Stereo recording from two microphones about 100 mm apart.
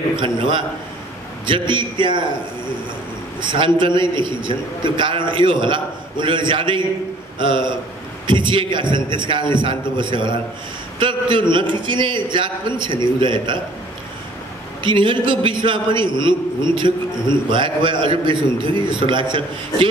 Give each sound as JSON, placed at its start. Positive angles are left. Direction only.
{"t": 0.1, "sound": "a man's voice", "side_deg": -55}
{"t": 3.3, "sound": "a man's voice", "side_deg": -55}
{"t": 14.8, "sound": "a man's voice", "side_deg": -55}